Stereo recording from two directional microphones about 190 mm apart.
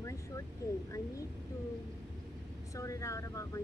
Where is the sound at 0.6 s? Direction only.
15° left (ahead or behind).